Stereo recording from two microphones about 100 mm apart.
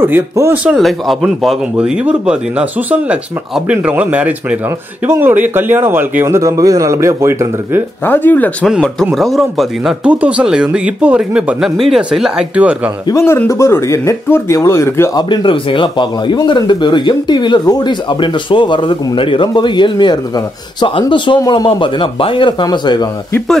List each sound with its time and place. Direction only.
0.0 s a man's voice: 20° right (ahead or behind)
0.7 s a man's voice: centre (ahead or behind); by 6.2 s 20° right (ahead or behind)
6.2 s a man's voice: 35° right (ahead or behind)
8.0 s speech: 20° left (ahead or behind)
9.1 s a man's voice: centre (ahead or behind)
10.0 s speech: 10° right (ahead or behind)
13.1 s speech: 25° left (ahead or behind)
15.1 s a man's voice: 50° left (ahead or behind)
21.6 s speech: 55° left (ahead or behind)